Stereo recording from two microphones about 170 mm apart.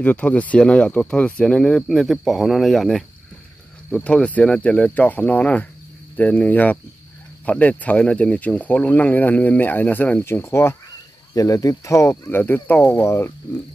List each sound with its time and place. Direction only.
0.0 s speech: 10° left (ahead or behind)